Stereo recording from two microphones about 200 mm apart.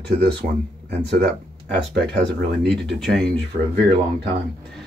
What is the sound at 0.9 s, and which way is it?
Speech, 55° right (ahead or behind).